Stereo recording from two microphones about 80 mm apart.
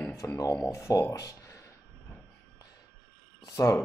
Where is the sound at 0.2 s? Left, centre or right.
Left.